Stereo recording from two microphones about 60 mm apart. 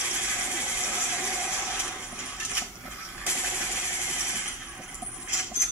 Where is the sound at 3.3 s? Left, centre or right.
Centre.